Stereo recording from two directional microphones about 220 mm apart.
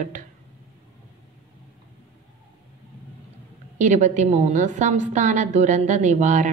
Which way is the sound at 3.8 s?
35° right (ahead or behind).